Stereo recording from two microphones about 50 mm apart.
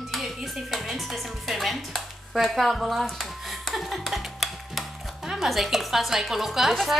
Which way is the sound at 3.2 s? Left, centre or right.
Centre.